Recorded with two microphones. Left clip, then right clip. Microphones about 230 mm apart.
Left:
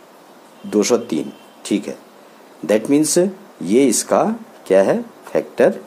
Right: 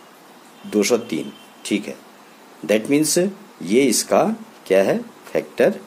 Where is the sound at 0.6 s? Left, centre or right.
Centre.